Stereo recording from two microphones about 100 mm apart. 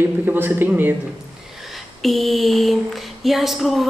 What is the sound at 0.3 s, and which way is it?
Speech, 20° right (ahead or behind).